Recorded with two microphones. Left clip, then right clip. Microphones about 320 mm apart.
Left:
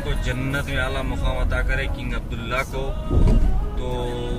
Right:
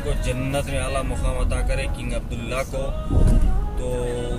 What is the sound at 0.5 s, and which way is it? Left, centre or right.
Speech, centre.